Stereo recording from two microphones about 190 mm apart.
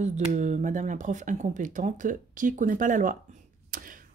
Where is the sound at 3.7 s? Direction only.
45° right (ahead or behind).